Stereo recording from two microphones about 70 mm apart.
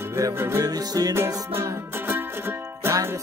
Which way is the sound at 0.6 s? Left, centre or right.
Right.